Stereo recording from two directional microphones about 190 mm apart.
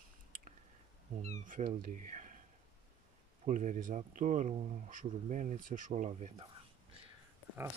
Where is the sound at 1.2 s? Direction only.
40° right (ahead or behind).